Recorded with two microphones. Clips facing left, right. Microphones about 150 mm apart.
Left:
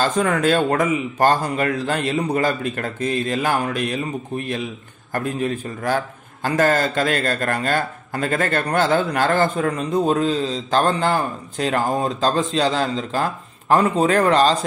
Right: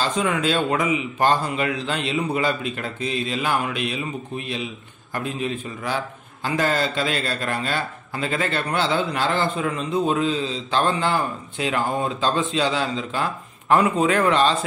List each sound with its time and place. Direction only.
0.0 s a man's voice: 50° left (ahead or behind)